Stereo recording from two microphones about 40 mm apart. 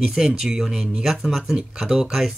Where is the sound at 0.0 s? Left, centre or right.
Centre.